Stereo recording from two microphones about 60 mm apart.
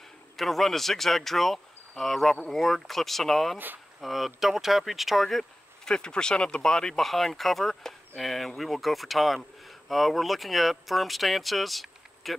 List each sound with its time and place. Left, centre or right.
0.4 s speech: centre
3.5 s speech: right
4.0 s speech: centre